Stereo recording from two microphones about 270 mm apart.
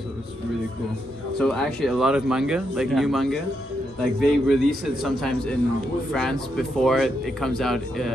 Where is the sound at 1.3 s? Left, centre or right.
Centre.